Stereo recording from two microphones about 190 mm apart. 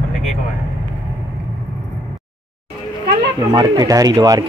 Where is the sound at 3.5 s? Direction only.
20° right (ahead or behind).